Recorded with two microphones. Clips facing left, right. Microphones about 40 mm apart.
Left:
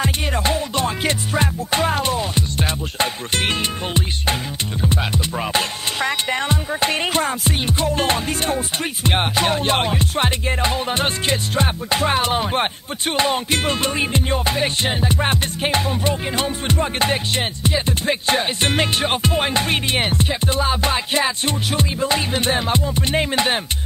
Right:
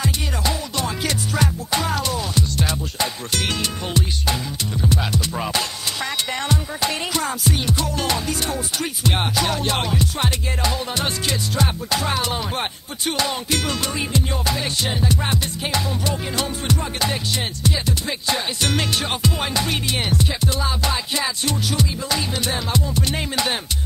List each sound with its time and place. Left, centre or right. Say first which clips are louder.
0.0 s music: left 3 dB; left